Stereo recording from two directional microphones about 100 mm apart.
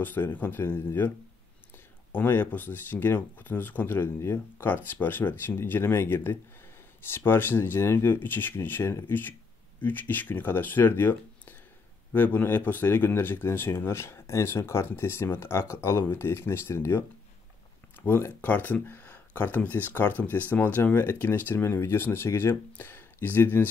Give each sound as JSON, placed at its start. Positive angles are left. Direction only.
{"t": 0.0, "sound": "speech", "side_deg": 20}
{"t": 2.1, "sound": "speech", "side_deg": 20}
{"t": 18.0, "sound": "speech", "side_deg": 20}